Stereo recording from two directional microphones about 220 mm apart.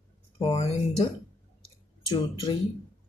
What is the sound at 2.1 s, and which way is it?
Speech, 20° left (ahead or behind).